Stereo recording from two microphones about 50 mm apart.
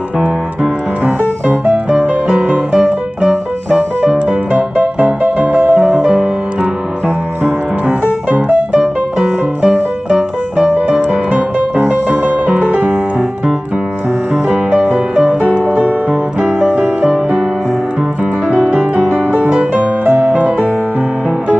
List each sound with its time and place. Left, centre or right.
2.2 s music: right
4.3 s music: right
8.3 s music: right
8.7 s music: centre
10.9 s music: right
14.7 s music: right
18.8 s music: right